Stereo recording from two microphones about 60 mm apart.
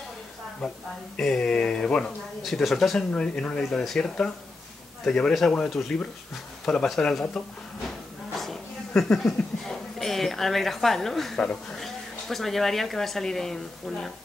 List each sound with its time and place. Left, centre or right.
1.1 s speech: centre
2.4 s speech: centre
3.1 s speech: centre
5.0 s a man's voice: centre
8.4 s a sound: centre
9.1 s a woman's voice: centre